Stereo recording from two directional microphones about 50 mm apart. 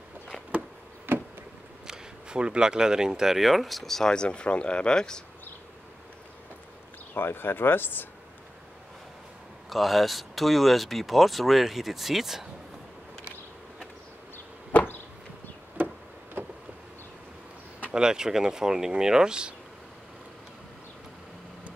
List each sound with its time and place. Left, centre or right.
1.1 s a sound: right
1.9 s speech: centre
4.1 s speech: centre
7.2 s speech: left
9.7 s speech: centre
14.3 s door: left
17.9 s speech: centre